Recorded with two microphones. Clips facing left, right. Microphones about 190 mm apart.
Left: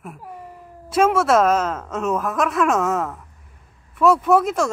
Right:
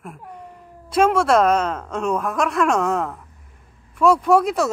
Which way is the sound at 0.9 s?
5° left (ahead or behind).